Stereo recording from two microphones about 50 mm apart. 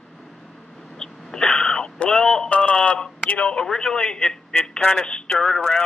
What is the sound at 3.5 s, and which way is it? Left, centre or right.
A man's voice, centre.